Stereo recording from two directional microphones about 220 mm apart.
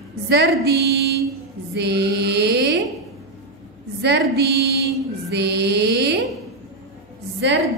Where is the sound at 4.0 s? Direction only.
50° right (ahead or behind).